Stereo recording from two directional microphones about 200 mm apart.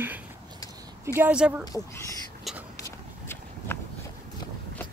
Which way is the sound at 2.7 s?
15° left (ahead or behind).